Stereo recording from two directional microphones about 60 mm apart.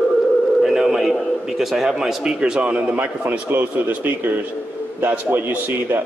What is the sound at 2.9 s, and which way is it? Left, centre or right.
Speech, right.